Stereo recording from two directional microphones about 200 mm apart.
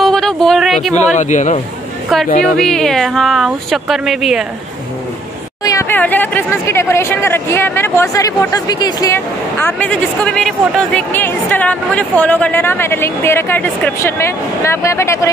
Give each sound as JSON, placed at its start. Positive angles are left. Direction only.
{"t": 0.0, "sound": "a sound", "side_deg": 5}
{"t": 0.9, "sound": "speech", "side_deg": 35}
{"t": 2.5, "sound": "speech", "side_deg": 5}
{"t": 5.6, "sound": "speech", "side_deg": 15}